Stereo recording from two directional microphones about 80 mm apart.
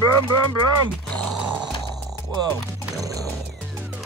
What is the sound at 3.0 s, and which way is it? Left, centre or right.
Music, right.